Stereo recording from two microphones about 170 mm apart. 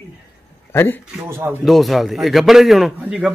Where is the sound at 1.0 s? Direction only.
10° right (ahead or behind).